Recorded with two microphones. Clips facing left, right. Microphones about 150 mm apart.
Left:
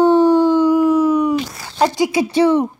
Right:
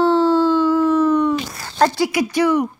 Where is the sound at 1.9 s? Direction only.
20° left (ahead or behind).